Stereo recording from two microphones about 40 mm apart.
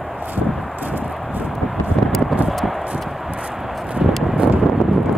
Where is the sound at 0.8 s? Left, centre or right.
Right.